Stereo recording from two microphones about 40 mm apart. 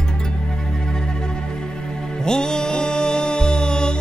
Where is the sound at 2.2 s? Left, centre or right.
Centre.